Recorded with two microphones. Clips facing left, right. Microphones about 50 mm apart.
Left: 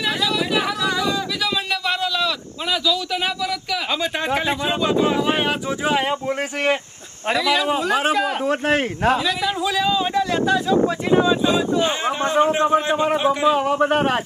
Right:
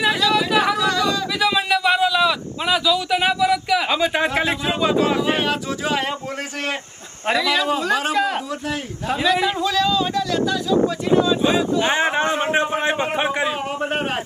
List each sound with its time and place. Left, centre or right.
0.3 s chatter: centre
0.8 s a sound: centre
1.4 s a sound: centre
4.4 s speech: centre
5.0 s speech: centre
5.4 s speech: centre
7.2 s speech: centre
8.5 s speech: left
9.6 s speech: centre
11.8 s a man's voice: right